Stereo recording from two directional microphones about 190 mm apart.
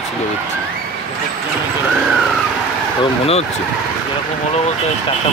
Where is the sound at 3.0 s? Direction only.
30° left (ahead or behind).